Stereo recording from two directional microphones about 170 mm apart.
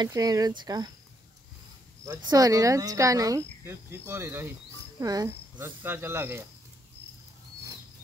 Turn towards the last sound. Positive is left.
turn(degrees=-15)  # may be behind; listen again after turning